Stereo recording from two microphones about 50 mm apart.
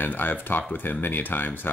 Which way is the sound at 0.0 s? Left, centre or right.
Left.